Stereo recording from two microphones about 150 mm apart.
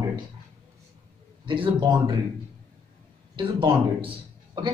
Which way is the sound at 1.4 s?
35° right (ahead or behind).